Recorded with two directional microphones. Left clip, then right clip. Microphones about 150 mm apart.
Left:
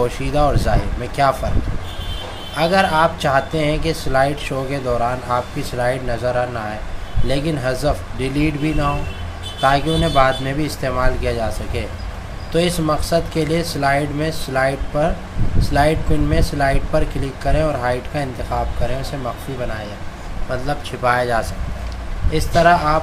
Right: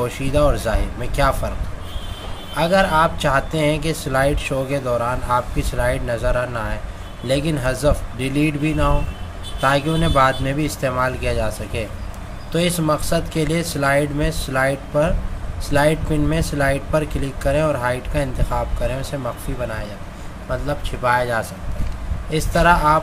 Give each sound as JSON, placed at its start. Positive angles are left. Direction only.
{"t": 0.0, "sound": "speech", "side_deg": -30}
{"t": 2.5, "sound": "speech", "side_deg": -25}
{"t": 20.6, "sound": "speech", "side_deg": -20}
{"t": 22.3, "sound": "speech", "side_deg": -35}